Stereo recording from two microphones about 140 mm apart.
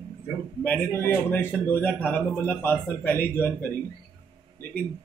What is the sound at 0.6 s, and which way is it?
Speech, 15° left (ahead or behind).